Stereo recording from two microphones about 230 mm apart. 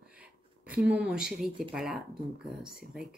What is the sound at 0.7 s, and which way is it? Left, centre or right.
Speech, centre.